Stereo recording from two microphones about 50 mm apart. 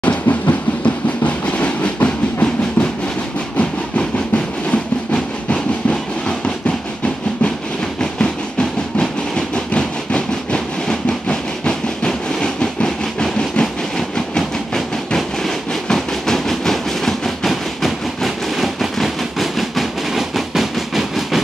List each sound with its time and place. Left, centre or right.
0.0 s train: left
4.6 s train: left
8.0 s train: centre